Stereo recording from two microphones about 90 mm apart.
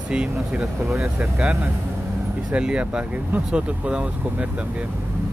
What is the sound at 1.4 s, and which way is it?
Speech, 20° right (ahead or behind).